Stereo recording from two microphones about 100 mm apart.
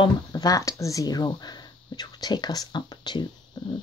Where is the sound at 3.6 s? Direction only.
50° left (ahead or behind).